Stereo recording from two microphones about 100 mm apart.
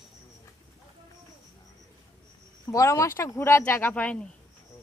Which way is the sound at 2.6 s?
35° left (ahead or behind).